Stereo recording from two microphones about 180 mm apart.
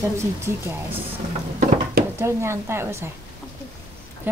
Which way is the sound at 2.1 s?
15° right (ahead or behind).